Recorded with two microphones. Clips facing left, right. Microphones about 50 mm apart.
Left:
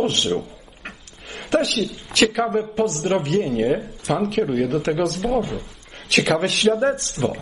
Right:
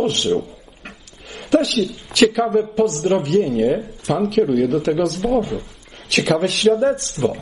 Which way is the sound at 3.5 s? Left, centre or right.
Centre.